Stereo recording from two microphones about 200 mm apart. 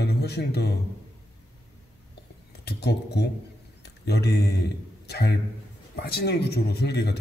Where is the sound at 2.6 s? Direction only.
55° left (ahead or behind).